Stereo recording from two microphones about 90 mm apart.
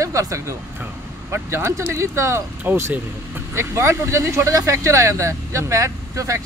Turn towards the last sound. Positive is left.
turn(degrees=-35)  # may be behind; listen again after turning